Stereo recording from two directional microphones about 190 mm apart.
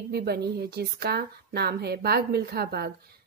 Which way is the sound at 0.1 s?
55° right (ahead or behind).